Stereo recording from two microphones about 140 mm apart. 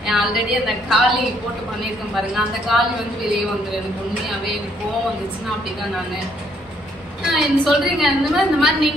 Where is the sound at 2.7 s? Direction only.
Centre (ahead or behind).